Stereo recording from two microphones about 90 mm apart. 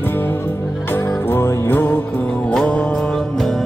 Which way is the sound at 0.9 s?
25° left (ahead or behind).